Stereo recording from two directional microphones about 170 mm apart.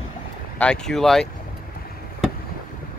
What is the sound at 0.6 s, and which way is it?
Speech, 5° left (ahead or behind).